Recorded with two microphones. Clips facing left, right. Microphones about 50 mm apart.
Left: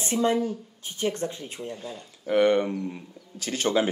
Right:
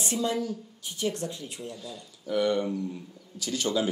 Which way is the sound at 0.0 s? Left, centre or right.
Left.